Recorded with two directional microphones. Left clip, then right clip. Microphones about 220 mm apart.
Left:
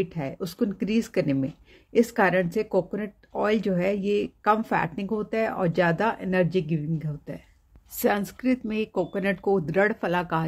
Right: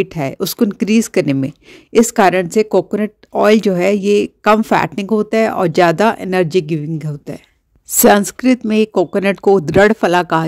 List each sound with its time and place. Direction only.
0.0 s speech: 50° right (ahead or behind)